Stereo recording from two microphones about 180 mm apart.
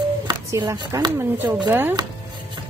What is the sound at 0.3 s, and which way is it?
A woman's voice, 20° right (ahead or behind).